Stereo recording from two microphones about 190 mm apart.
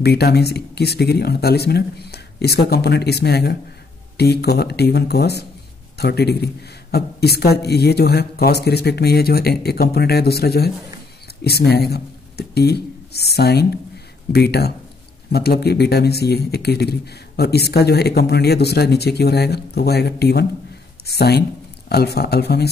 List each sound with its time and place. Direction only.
0.0 s speech: 60° left (ahead or behind)